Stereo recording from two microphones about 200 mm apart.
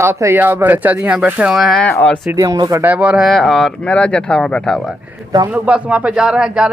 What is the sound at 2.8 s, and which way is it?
Speech, 5° right (ahead or behind).